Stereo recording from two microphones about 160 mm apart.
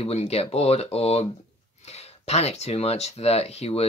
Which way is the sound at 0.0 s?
40° left (ahead or behind).